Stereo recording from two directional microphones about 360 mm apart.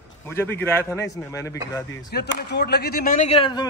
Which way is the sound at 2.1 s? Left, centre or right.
Left.